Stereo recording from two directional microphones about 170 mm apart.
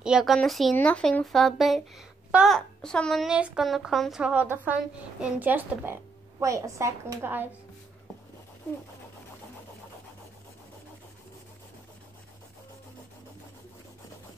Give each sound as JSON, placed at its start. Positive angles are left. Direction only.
{"t": 0.0, "sound": "a woman's voice", "side_deg": 0}